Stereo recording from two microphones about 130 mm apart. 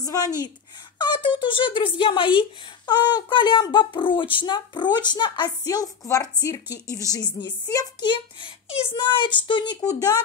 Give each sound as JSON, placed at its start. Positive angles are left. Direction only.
{"t": 0.0, "sound": "speech", "side_deg": 30}
{"t": 9.8, "sound": "speech", "side_deg": 25}